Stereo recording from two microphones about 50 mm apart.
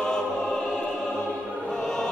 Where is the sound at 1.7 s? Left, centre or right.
Centre.